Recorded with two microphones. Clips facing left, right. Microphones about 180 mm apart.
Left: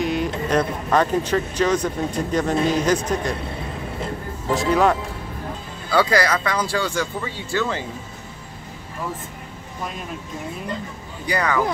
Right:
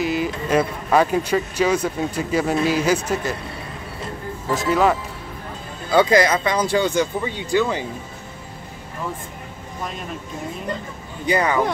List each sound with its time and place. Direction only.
0.0 s speech: 5° right (ahead or behind)
4.6 s speech: centre (ahead or behind)
5.9 s speech: 20° right (ahead or behind)
11.2 s speech: 20° right (ahead or behind)